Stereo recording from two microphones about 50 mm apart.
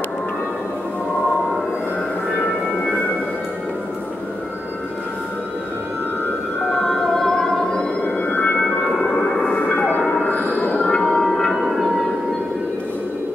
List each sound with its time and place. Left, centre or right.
6.7 s a sound: centre
8.0 s music: left
8.8 s music: centre
9.5 s music: left
10.8 s music: centre